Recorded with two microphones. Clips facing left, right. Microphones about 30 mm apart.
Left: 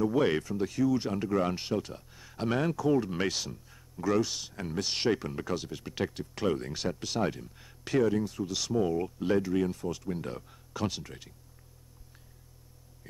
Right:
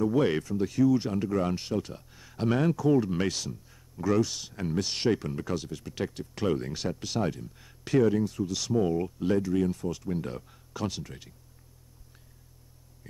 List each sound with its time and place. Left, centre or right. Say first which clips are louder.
0.0 s speech: right 1 dB; centre
6.0 s speech: right 1 dB; centre
13.0 s a sound: right 2 dB; centre